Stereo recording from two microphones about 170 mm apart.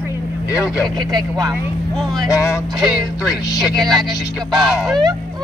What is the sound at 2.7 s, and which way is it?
Speech, centre (ahead or behind).